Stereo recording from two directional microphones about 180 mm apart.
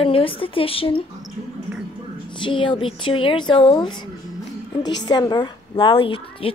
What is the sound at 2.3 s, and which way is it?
A woman's voice, 25° left (ahead or behind).